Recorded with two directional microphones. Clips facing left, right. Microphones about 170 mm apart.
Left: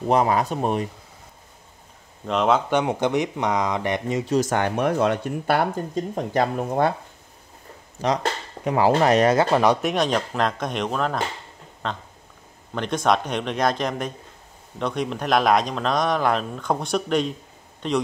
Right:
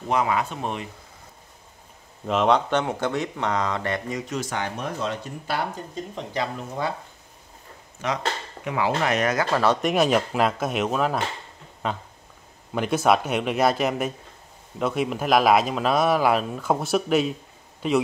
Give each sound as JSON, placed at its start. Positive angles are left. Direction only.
{"t": 0.1, "sound": "speech", "side_deg": 40}
{"t": 2.2, "sound": "speech", "side_deg": 0}
{"t": 2.7, "sound": "speech", "side_deg": 15}
{"t": 4.2, "sound": "speech", "side_deg": 35}
{"t": 4.5, "sound": "speech", "side_deg": 55}
{"t": 8.0, "sound": "speech", "side_deg": 35}
{"t": 9.8, "sound": "speech", "side_deg": 0}